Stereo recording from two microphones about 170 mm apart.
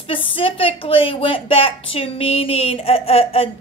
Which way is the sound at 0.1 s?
30° left (ahead or behind).